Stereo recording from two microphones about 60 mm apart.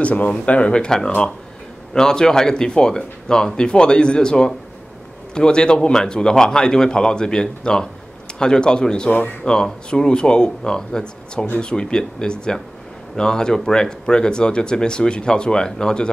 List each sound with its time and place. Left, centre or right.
0.0 s speech: left